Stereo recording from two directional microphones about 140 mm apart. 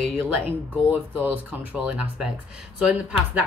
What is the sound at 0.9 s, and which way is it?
Speech, 10° right (ahead or behind).